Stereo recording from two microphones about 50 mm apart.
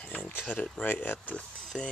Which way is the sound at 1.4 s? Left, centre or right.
Left.